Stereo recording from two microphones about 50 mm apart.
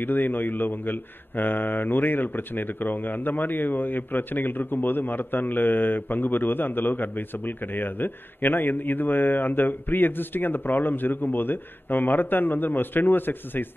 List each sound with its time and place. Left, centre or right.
0.0 s a man's voice: left